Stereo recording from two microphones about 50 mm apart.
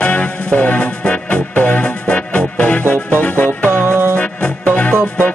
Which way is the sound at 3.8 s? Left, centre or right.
Right.